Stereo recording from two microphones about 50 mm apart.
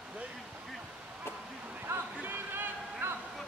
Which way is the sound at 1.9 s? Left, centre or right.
Right.